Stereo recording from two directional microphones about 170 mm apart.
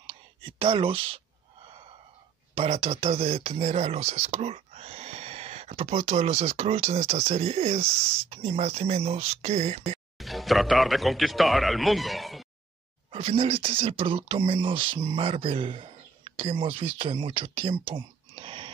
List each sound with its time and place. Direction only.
0.0 s speech: 35° right (ahead or behind)
2.5 s speech: 35° right (ahead or behind)
10.1 s speech: centre (ahead or behind)
13.1 s speech: 35° right (ahead or behind)